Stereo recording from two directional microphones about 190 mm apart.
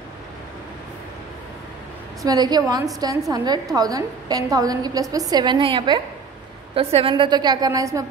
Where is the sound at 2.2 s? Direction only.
20° right (ahead or behind).